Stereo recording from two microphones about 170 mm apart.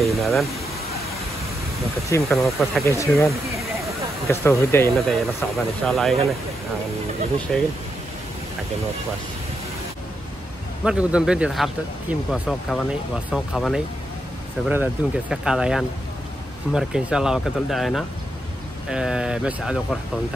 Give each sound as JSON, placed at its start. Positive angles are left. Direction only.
{"t": 0.0, "sound": "speech", "side_deg": 0}
{"t": 2.2, "sound": "speech", "side_deg": 0}
{"t": 2.8, "sound": "speech", "side_deg": 15}
{"t": 4.3, "sound": "speech", "side_deg": 15}
{"t": 4.9, "sound": "speech", "side_deg": 0}
{"t": 7.5, "sound": "speech", "side_deg": 5}
{"t": 10.8, "sound": "speech", "side_deg": -5}